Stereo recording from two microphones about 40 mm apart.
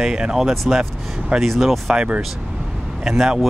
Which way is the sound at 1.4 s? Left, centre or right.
Centre.